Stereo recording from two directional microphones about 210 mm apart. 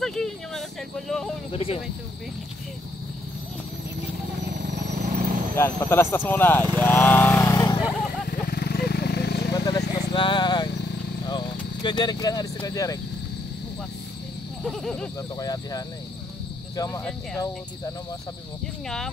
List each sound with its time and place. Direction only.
0.0 s a sound: centre (ahead or behind)
1.5 s speech: 30° left (ahead or behind)
4.6 s vehicle: 35° right (ahead or behind)
5.6 s speech: 10° left (ahead or behind)
6.8 s vehicle: 10° left (ahead or behind)
8.3 s vehicle: 50° left (ahead or behind)
9.5 s vehicle: 15° left (ahead or behind)
12.5 s speech: 15° left (ahead or behind)
14.6 s a sound: 5° left (ahead or behind)
15.3 s speech: 15° left (ahead or behind)